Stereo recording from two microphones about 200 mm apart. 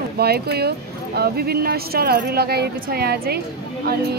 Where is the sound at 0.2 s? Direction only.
55° right (ahead or behind).